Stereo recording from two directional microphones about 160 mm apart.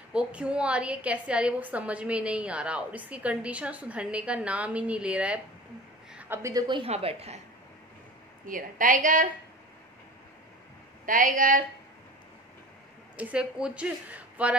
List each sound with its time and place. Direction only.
0.1 s a woman's voice: 5° right (ahead or behind)
6.7 s a woman's voice: 35° right (ahead or behind)
8.5 s a woman's voice: 55° right (ahead or behind)
11.1 s a woman's voice: 60° right (ahead or behind)
13.1 s a woman's voice: 10° right (ahead or behind)